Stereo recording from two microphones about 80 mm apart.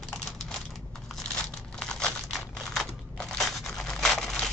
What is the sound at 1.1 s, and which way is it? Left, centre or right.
Crumpling, centre.